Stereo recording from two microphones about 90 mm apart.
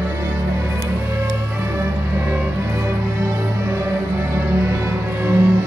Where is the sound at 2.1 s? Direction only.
25° right (ahead or behind).